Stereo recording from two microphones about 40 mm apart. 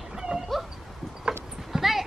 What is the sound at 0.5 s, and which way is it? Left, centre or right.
Dog, centre.